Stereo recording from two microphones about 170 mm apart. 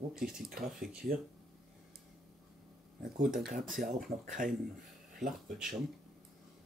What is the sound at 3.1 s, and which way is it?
Speech, 55° right (ahead or behind).